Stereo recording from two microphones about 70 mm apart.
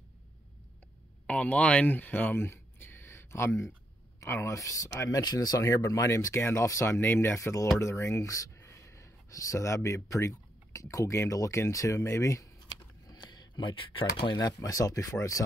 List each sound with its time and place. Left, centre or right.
1.2 s speech: centre; by 5.2 s left
5.2 s speech: left
7.0 s speech: left
13.1 s a sound: left
14.3 s speech: left